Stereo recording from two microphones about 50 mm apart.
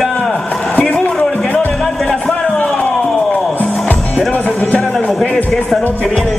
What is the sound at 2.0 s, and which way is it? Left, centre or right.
Music, centre.